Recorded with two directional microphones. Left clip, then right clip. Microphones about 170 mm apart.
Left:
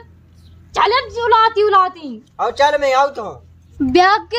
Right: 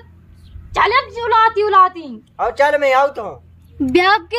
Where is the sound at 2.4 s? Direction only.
5° left (ahead or behind).